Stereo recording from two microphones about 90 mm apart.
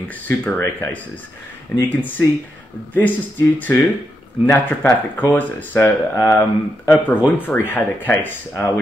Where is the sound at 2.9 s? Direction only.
20° left (ahead or behind).